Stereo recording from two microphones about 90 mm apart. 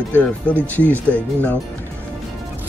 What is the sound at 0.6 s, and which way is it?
Speech, 20° left (ahead or behind).